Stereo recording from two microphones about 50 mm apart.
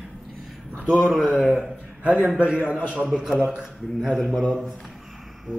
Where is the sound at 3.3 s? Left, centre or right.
Centre.